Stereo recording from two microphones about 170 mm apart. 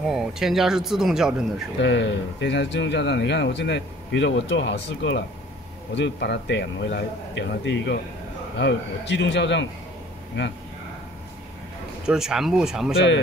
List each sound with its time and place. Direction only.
0.0 s speech: 5° right (ahead or behind)
1.8 s speech: 90° left
12.1 s speech: 5° right (ahead or behind)
12.9 s speech: 90° left